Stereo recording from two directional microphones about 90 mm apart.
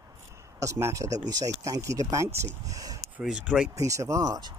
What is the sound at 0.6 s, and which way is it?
Speech, 35° right (ahead or behind).